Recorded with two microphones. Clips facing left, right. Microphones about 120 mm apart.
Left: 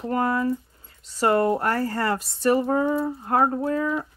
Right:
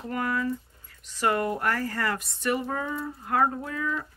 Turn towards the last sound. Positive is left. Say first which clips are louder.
# left 7 dB
turn(degrees=35)  # may be behind; listen again after turning